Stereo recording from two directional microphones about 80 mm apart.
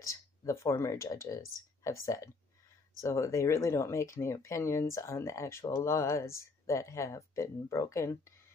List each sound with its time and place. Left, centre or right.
0.0 s speech: left